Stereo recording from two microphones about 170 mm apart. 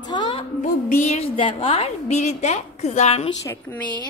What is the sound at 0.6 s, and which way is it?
A woman's voice, 50° left (ahead or behind).